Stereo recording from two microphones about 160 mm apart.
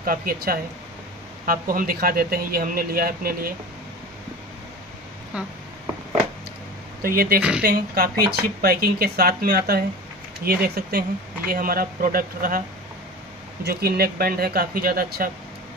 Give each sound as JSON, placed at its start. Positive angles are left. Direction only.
{"t": 0.0, "sound": "speech", "side_deg": -65}
{"t": 7.0, "sound": "speech", "side_deg": -65}
{"t": 13.7, "sound": "speech", "side_deg": -75}